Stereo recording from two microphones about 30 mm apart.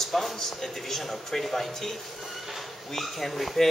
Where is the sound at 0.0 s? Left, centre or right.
Centre.